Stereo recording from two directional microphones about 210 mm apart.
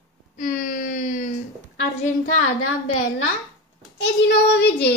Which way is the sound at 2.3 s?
90° left.